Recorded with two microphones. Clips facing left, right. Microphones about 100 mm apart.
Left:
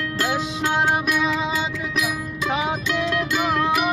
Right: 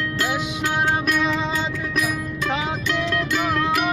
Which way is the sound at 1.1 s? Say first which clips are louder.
Even; 5° left (ahead or behind).